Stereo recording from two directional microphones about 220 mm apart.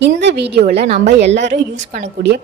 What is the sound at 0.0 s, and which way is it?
A woman's voice, 50° right (ahead or behind).